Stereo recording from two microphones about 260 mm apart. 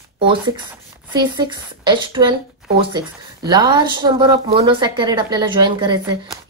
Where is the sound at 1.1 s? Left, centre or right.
Centre.